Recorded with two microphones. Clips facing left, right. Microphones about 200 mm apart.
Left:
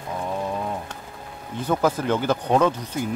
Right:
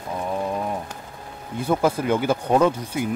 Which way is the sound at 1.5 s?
10° right (ahead or behind).